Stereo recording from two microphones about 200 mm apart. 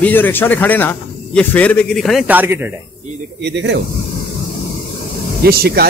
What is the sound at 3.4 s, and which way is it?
Speech, 60° right (ahead or behind).